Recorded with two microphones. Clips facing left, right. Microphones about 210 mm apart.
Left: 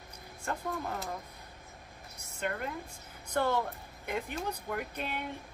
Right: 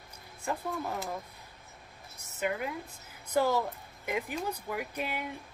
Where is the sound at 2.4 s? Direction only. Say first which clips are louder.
Right 3 dB; 5° right (ahead or behind).